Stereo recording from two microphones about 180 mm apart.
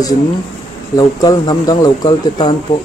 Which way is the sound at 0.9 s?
20° left (ahead or behind).